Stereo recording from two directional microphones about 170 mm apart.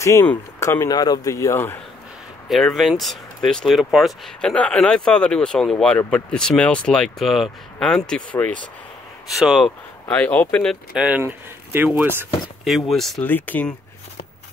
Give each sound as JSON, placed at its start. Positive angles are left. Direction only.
{"t": 0.0, "sound": "speech", "side_deg": 15}
{"t": 2.5, "sound": "speech", "side_deg": 0}
{"t": 12.6, "sound": "speech", "side_deg": 0}